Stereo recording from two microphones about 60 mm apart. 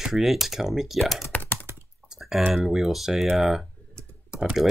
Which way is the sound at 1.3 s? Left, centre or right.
Left.